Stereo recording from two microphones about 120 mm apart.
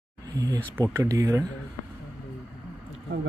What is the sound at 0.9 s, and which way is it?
Speech, 25° right (ahead or behind).